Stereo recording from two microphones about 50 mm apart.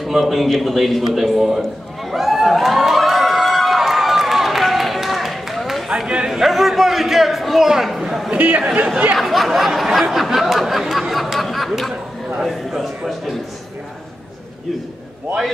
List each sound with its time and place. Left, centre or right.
0.0 s speech: centre
1.6 s crowd: centre
5.9 s chatter: centre
6.4 s a sound: centre
8.4 s speech: right
9.1 s speech: centre